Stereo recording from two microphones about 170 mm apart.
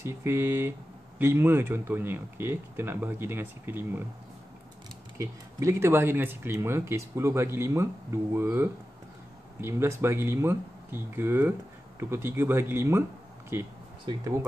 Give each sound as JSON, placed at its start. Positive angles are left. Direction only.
{"t": 0.0, "sound": "speech", "side_deg": -15}
{"t": 5.1, "sound": "speech", "side_deg": -15}
{"t": 14.1, "sound": "speech", "side_deg": -30}